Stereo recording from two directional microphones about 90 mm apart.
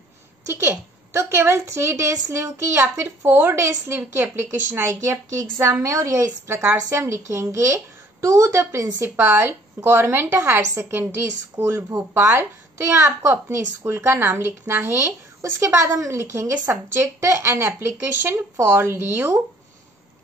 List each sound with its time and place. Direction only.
0.5 s a woman's voice: 30° right (ahead or behind)
15.6 s a woman's voice: 35° right (ahead or behind)